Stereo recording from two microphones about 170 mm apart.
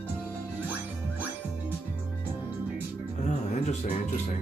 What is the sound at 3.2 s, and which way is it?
Music, 45° left (ahead or behind).